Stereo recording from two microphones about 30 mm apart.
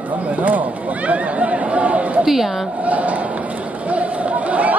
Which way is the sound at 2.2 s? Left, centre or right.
Centre.